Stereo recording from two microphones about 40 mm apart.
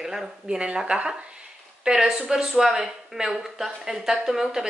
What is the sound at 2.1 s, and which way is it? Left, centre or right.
Speech, centre.